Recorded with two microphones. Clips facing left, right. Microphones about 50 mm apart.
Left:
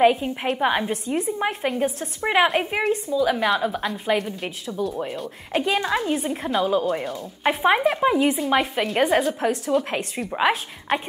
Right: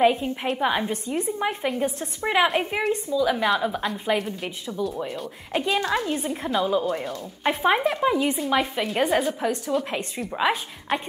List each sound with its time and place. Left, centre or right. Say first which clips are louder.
0.0 s a woman's voice: left 2 dB; centre
2.4 s speech: left 2 dB; centre
3.1 s a woman's voice: even; centre
3.4 s speech: left 1 dB; centre
5.7 s a woman's voice: left 1 dB; centre
10.9 s speech: left 2 dB; centre